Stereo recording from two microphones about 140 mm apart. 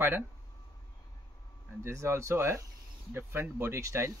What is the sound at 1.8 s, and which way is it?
Speech, 20° right (ahead or behind).